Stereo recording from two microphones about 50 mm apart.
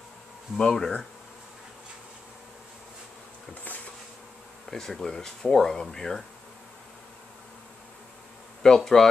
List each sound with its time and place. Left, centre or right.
0.6 s speech: centre
3.6 s bee: left
4.6 s speech: centre
8.6 s speech: centre